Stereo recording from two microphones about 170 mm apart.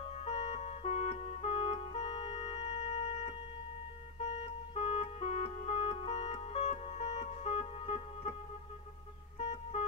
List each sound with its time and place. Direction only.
0.2 s organ: 35° left (ahead or behind)
4.4 s organ: 35° left (ahead or behind)
9.4 s music: 40° left (ahead or behind)